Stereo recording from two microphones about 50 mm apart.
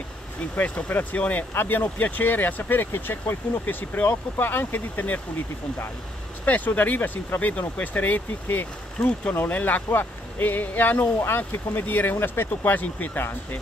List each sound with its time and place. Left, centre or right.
0.6 s speech: left
3.6 s speech: left
6.4 s speech: left
9.8 s speech: left